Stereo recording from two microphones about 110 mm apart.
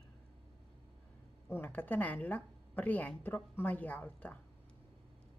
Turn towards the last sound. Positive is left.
turn(degrees=15)  # may be behind; listen again after turning